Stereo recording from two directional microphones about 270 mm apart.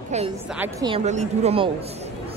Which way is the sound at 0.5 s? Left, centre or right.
Centre.